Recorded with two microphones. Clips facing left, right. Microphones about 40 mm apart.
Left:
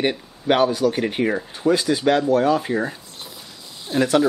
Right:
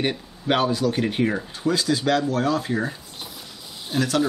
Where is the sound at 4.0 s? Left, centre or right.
Left.